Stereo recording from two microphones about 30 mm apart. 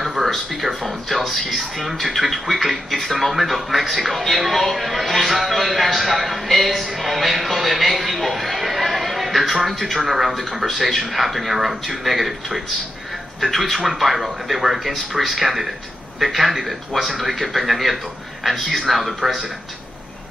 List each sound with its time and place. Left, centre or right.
0.2 s a man's voice: centre